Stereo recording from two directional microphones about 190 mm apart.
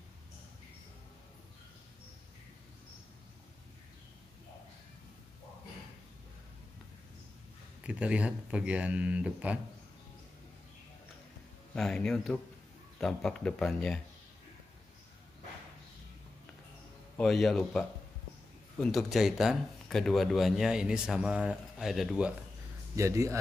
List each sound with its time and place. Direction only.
7.8 s speech: 5° right (ahead or behind)
11.7 s speech: 5° left (ahead or behind)
17.2 s speech: centre (ahead or behind)
22.9 s speech: 15° right (ahead or behind)